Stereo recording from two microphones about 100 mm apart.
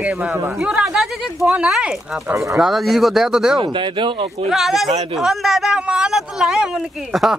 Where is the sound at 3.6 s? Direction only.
55° right (ahead or behind).